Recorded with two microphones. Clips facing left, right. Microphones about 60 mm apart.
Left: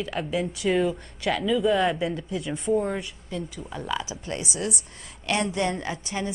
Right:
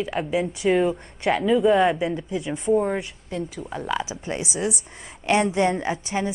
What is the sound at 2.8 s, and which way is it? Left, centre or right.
A woman's voice, centre.